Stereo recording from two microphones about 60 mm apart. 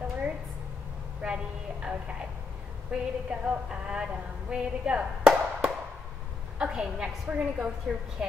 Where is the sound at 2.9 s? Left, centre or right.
Centre.